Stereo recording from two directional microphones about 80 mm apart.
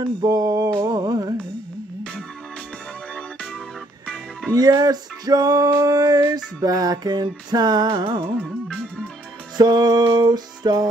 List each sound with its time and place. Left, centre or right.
0.3 s music: right
4.6 s male singing: right
8.4 s music: centre
9.6 s male singing: right